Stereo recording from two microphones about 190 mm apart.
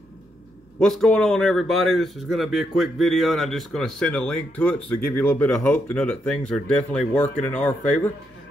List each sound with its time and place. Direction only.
0.7 s a man's voice: centre (ahead or behind)